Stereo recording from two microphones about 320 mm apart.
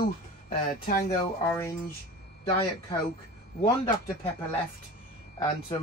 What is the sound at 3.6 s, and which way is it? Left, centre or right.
Speech, centre.